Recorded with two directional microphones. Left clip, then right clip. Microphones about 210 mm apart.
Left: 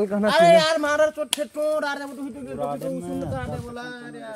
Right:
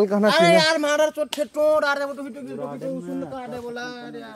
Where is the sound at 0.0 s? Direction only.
25° right (ahead or behind).